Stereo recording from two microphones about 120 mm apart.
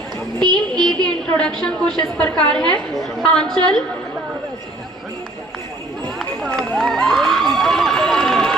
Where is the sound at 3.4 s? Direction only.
35° right (ahead or behind).